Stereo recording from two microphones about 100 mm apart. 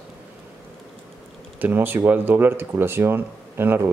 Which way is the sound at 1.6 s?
20° right (ahead or behind).